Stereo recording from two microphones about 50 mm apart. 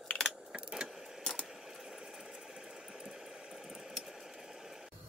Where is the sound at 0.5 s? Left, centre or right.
Centre.